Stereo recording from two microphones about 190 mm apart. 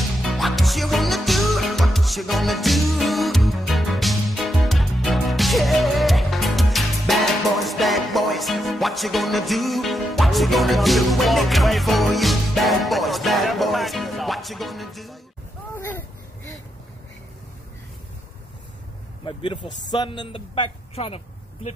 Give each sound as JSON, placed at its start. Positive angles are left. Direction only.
{"t": 0.2, "sound": "music", "side_deg": 0}
{"t": 15.7, "sound": "a sound", "side_deg": 10}
{"t": 19.2, "sound": "speech", "side_deg": 25}